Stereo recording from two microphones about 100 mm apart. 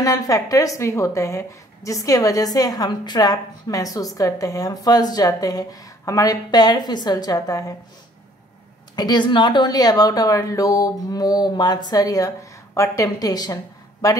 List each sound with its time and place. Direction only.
0.0 s a woman's voice: 35° left (ahead or behind)
8.9 s a woman's voice: 45° left (ahead or behind)